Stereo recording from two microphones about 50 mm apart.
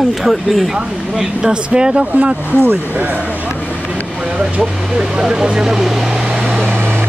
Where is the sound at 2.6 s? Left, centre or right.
Right.